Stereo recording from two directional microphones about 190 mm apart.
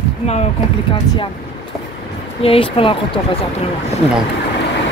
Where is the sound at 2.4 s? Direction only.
30° left (ahead or behind).